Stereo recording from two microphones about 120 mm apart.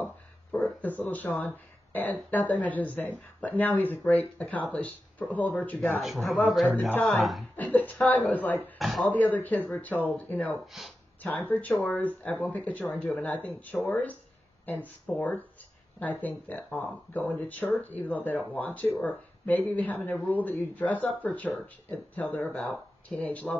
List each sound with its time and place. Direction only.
0.0 s a sound: 10° left (ahead or behind)
0.8 s speech: 15° left (ahead or behind)
5.9 s a man's voice: centre (ahead or behind)
7.5 s speech: 15° left (ahead or behind)
8.7 s speech: centre (ahead or behind)
9.1 s speech: 15° left (ahead or behind)